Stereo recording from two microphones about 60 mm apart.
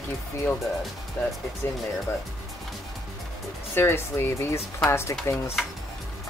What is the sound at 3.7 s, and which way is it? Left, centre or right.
Speech, left.